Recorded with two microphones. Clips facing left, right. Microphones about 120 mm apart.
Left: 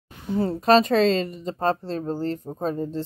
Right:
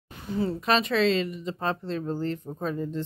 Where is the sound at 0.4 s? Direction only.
40° left (ahead or behind).